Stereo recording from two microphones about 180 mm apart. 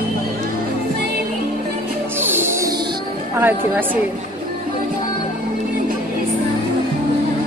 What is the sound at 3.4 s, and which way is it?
Speech, 10° right (ahead or behind).